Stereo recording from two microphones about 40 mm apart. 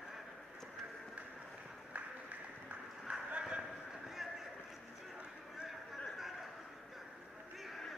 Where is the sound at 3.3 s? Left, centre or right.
Right.